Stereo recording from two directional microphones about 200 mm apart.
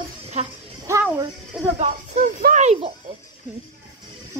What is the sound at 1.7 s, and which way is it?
Speech, 40° right (ahead or behind).